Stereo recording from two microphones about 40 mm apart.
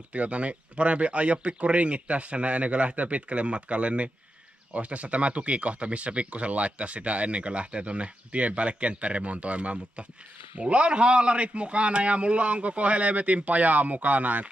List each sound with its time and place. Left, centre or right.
0.1 s speech: right